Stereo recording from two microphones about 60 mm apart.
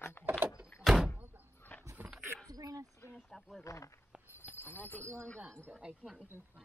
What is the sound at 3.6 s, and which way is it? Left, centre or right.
Speech, left.